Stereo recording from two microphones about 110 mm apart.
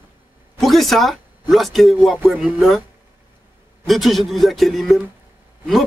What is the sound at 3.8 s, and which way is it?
A man's voice, centre (ahead or behind).